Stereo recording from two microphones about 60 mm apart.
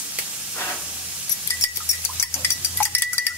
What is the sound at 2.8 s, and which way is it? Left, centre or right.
Cowbell, left.